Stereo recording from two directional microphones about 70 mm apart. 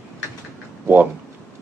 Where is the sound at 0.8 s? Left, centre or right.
Right.